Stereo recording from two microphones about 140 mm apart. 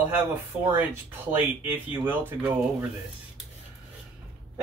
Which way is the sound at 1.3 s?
15° right (ahead or behind).